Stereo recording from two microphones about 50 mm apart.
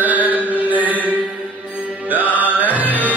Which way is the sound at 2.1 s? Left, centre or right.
Right.